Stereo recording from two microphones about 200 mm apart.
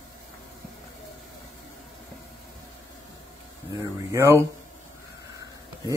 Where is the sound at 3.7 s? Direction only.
15° right (ahead or behind).